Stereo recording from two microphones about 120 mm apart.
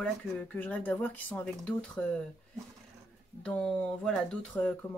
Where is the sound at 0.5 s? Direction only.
15° left (ahead or behind).